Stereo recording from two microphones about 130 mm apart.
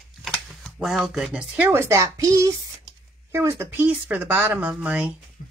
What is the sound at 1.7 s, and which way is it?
A woman's voice, 20° right (ahead or behind).